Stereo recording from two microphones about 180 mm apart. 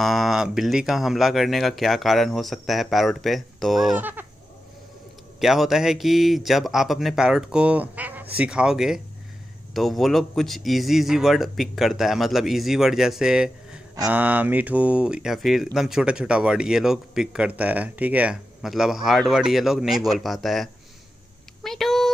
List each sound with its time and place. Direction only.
0.0 s speech: centre (ahead or behind)
5.4 s speech: centre (ahead or behind)
21.6 s a sound: centre (ahead or behind)